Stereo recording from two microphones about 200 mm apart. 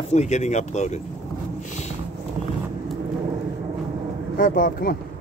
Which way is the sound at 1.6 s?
40° left (ahead or behind).